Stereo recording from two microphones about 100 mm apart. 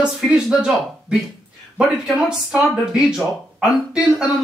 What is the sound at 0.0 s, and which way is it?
Speech, 10° right (ahead or behind).